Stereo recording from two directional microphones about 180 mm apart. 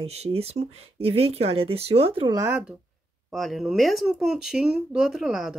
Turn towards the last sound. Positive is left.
turn(degrees=0)  # may be behind; listen again after turning